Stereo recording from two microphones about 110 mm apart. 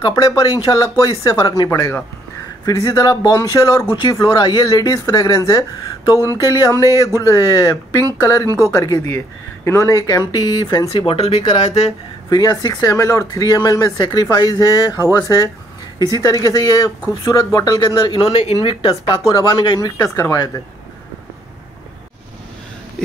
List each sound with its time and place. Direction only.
0.3 s speech: 35° left (ahead or behind)
8.5 s speech: 25° right (ahead or behind)
8.7 s speech: 30° left (ahead or behind)
11.0 s speech: 65° left (ahead or behind)
12.3 s speech: 40° left (ahead or behind)
18.1 s speech: 65° left (ahead or behind); by 19.9 s 45° left (ahead or behind)
20.0 s speech: 25° left (ahead or behind)